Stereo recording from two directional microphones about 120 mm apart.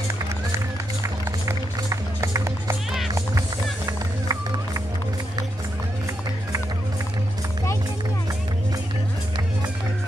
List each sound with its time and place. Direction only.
1.0 s music: 25° right (ahead or behind)